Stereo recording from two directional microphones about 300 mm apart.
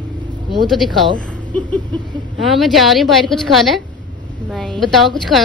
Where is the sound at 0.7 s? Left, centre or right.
Centre.